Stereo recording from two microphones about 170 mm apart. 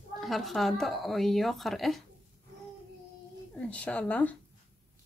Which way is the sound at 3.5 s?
5° left (ahead or behind).